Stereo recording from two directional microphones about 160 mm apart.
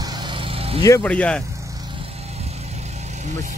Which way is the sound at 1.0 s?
10° left (ahead or behind).